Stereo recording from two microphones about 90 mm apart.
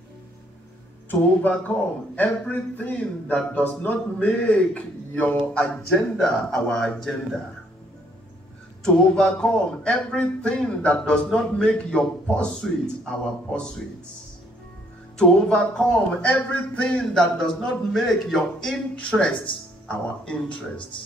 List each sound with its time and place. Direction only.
2.1 s speech: 15° left (ahead or behind)
8.8 s speech: 10° left (ahead or behind)
15.1 s speech: 10° left (ahead or behind)